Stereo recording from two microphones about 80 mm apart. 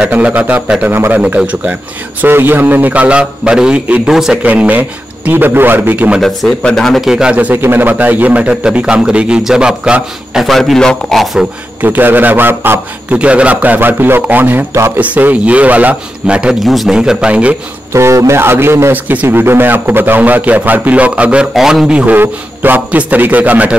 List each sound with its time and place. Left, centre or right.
0.0 s a man's voice: centre
1.2 s a man's voice: centre
4.4 s a man's voice: centre
6.2 s a man's voice: centre
7.3 s a man's voice: right; by 10.4 s centre
10.4 s a man's voice: centre
11.8 s a man's voice: right
13.2 s a man's voice: centre
16.6 s a man's voice: centre
17.9 s a man's voice: right; by 21.5 s centre
21.5 s a man's voice: centre